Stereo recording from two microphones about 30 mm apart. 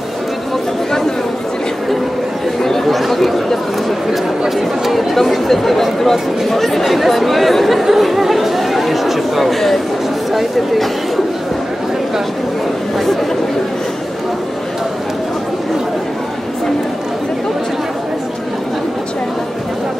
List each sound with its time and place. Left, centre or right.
2.9 s chatter: centre
10.3 s speech: centre